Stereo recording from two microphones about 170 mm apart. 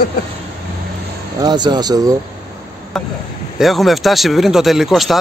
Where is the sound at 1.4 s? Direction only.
25° right (ahead or behind).